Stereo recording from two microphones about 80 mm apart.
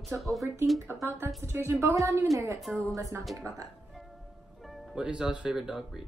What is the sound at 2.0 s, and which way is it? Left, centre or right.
A woman's voice, right.